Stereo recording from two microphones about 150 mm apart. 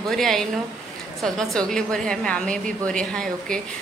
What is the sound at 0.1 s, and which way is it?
A woman's voice, centre (ahead or behind).